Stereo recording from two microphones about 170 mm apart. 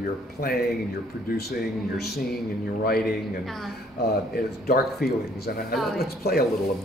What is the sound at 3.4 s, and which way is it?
Speech, centre (ahead or behind).